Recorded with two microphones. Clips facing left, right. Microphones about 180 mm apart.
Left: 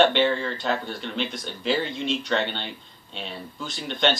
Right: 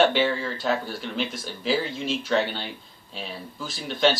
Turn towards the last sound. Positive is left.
turn(degrees=-5)  # may be behind; listen again after turning